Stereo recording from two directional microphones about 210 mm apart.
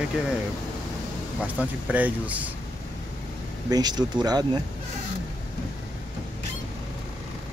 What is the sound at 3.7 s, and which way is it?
Speech, 20° right (ahead or behind).